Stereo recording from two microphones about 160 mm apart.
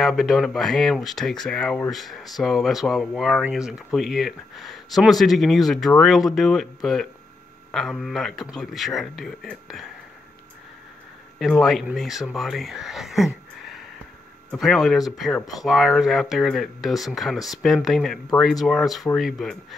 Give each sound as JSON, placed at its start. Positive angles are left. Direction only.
{"t": 0.0, "sound": "speech", "side_deg": 0}
{"t": 11.3, "sound": "speech", "side_deg": 0}